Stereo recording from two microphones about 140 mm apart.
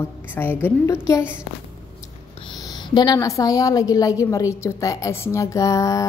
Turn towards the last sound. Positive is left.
turn(degrees=25)  # may be behind; listen again after turning